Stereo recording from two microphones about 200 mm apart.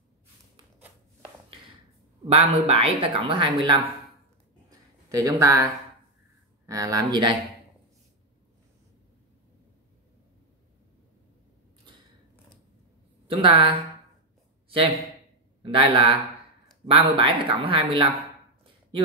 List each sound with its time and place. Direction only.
2.2 s speech: 30° right (ahead or behind)
4.6 s a sound: 15° right (ahead or behind)
6.6 s speech: 15° right (ahead or behind)
13.3 s speech: 25° right (ahead or behind)
15.6 s speech: 25° right (ahead or behind)